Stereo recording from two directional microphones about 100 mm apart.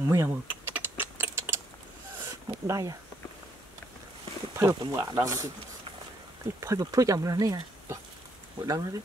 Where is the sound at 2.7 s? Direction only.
35° right (ahead or behind).